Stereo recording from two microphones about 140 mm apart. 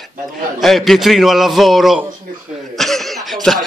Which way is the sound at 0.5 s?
Centre (ahead or behind).